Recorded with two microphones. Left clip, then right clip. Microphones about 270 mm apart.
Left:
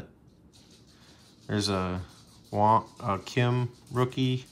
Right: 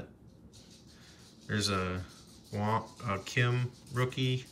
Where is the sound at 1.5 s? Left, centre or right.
Centre.